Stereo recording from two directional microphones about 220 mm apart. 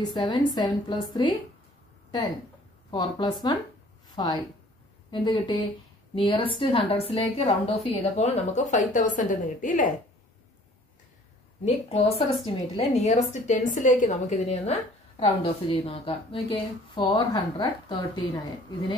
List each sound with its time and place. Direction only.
0.1 s a woman's voice: 20° left (ahead or behind)
2.9 s a woman's voice: 20° left (ahead or behind); by 9.8 s 35° left (ahead or behind)
11.6 s a woman's voice: 30° left (ahead or behind)